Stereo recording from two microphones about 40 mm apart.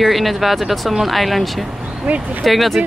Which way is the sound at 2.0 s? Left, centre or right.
Right.